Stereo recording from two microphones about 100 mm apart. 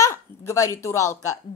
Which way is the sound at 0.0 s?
30° left (ahead or behind).